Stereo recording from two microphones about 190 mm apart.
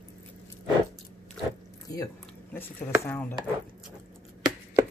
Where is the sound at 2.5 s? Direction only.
10° left (ahead or behind).